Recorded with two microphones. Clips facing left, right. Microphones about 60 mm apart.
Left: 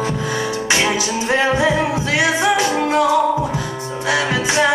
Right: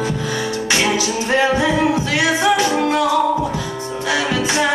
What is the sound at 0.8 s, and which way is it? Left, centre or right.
Music, left.